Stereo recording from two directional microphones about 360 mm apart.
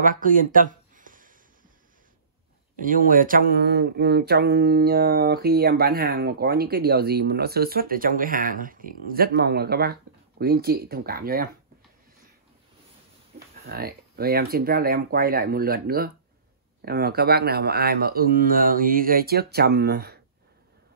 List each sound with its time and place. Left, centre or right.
0.0 s a sound: right
2.8 s mantra: right
13.7 s mantra: right